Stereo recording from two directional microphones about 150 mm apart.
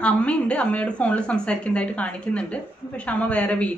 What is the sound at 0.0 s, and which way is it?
A woman's voice, 10° left (ahead or behind).